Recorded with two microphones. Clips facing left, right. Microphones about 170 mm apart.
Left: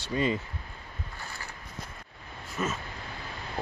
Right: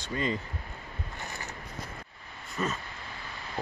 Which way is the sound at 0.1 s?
15° left (ahead or behind).